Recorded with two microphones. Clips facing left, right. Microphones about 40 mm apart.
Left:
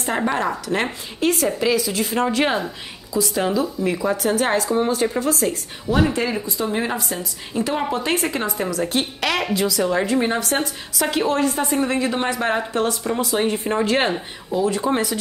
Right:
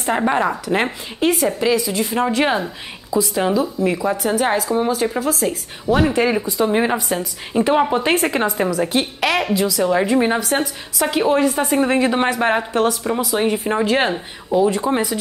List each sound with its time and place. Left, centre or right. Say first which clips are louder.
0.0 s a woman's voice: right 4 dB; centre
5.0 s a woman's voice: right 1 dB; centre
6.6 s speech: right 6 dB; right
8.7 s a woman's voice: right 3 dB; centre
12.8 s a woman's voice: right 3 dB; centre